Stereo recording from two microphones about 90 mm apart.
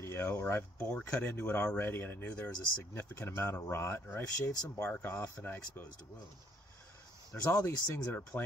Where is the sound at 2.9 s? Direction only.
35° left (ahead or behind).